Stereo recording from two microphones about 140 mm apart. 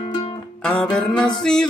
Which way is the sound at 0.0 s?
40° left (ahead or behind).